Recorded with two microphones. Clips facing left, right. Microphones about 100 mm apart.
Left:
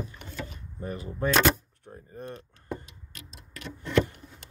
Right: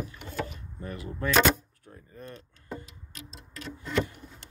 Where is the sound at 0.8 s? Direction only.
30° left (ahead or behind).